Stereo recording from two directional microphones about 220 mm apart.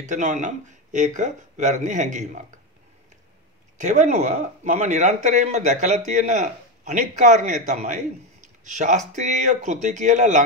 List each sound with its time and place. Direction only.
0.0 s speech: 35° right (ahead or behind)
3.7 s speech: 35° right (ahead or behind)